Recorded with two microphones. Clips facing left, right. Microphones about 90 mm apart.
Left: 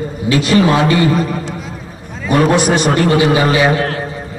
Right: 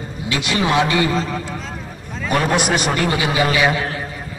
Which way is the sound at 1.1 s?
60° left (ahead or behind).